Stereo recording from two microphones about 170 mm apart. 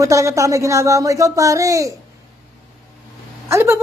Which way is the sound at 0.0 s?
20° right (ahead or behind).